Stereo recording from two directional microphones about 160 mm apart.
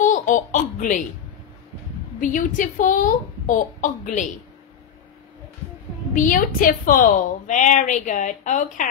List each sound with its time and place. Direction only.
0.0 s baby laughter: 50° left (ahead or behind)
2.1 s a woman's voice: 55° left (ahead or behind)
6.1 s a woman's voice: 60° left (ahead or behind)